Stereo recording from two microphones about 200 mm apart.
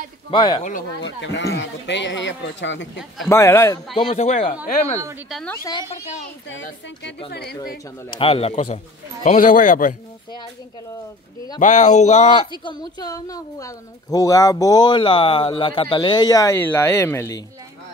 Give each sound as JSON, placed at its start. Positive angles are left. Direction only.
{"t": 0.3, "sound": "speech", "side_deg": 25}
{"t": 1.0, "sound": "speech", "side_deg": 65}
{"t": 3.3, "sound": "a man's voice", "side_deg": 15}
{"t": 4.1, "sound": "speech", "side_deg": 35}
{"t": 5.3, "sound": "a man's voice", "side_deg": 5}
{"t": 5.7, "sound": "speech", "side_deg": 20}
{"t": 7.2, "sound": "a woman's voice", "side_deg": 55}
{"t": 8.2, "sound": "speech", "side_deg": 30}
{"t": 11.6, "sound": "speech", "side_deg": 35}